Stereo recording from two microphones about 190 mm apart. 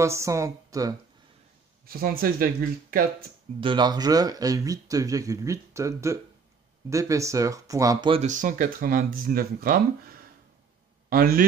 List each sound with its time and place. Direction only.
0.0 s speech: 15° right (ahead or behind)
1.9 s speech: 50° right (ahead or behind)
3.6 s speech: 25° right (ahead or behind)
8.3 s a man's voice: 45° right (ahead or behind)